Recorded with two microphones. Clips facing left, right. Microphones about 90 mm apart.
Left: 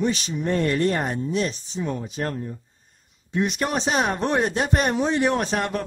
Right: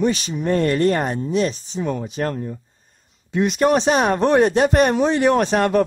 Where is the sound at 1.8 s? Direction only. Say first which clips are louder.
Right 5 dB; 75° right (ahead or behind).